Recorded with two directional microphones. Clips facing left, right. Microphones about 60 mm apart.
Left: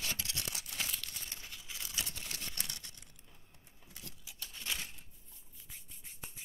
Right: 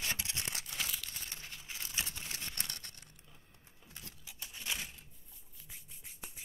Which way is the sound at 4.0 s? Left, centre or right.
Right.